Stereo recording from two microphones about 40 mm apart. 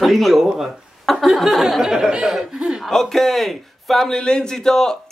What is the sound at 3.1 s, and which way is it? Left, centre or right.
Speech, centre.